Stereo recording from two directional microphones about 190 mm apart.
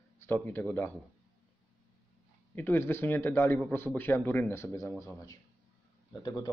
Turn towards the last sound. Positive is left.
turn(degrees=20)  # may be behind; listen again after turning